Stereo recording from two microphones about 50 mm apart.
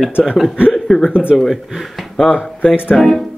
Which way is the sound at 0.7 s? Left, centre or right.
Centre.